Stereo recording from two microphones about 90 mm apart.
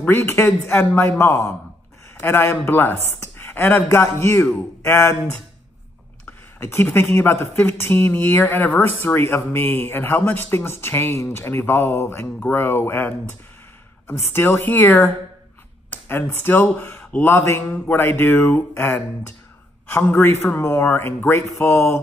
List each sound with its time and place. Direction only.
0.0 s speech: 25° left (ahead or behind)
6.6 s speech: 25° left (ahead or behind)